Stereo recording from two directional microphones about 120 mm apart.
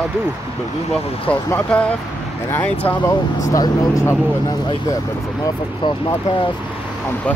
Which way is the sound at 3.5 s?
25° left (ahead or behind).